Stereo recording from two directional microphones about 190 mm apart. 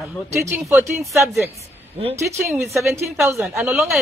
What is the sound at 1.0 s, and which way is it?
A woman's voice, centre (ahead or behind).